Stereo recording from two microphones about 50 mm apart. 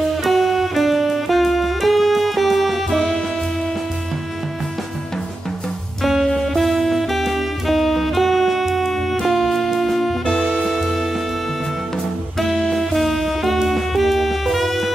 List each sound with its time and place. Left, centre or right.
0.2 s saxophone: centre
2.9 s music: centre
6.0 s music: centre
12.4 s music: centre